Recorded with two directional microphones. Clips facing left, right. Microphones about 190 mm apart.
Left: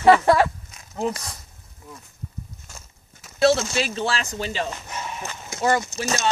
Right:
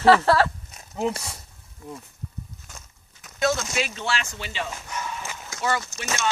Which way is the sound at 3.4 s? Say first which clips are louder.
Left 5 dB; 30° left (ahead or behind).